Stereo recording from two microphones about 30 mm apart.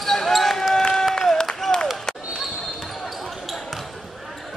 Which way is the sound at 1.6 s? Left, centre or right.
Centre.